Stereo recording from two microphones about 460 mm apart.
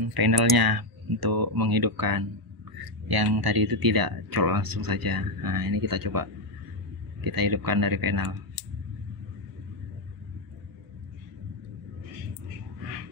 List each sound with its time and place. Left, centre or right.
0.0 s speech: right